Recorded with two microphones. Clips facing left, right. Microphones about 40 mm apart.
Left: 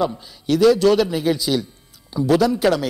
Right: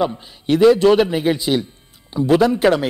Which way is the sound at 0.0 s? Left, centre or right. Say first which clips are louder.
Right 2 dB; right.